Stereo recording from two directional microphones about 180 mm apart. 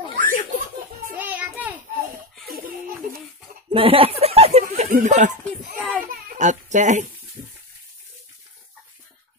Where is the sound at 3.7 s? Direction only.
30° right (ahead or behind).